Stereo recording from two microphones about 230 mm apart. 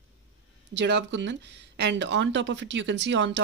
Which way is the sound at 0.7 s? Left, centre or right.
Right.